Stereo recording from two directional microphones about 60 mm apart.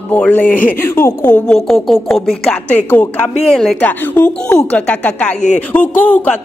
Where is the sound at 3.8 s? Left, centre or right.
Left.